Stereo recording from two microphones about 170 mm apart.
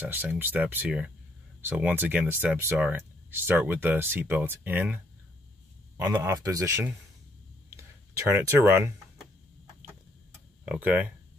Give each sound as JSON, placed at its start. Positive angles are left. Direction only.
{"t": 0.0, "sound": "speech", "side_deg": -10}
{"t": 6.0, "sound": "speech", "side_deg": -20}
{"t": 10.7, "sound": "speech", "side_deg": -5}